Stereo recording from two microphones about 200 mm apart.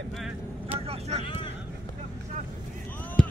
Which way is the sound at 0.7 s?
30° right (ahead or behind).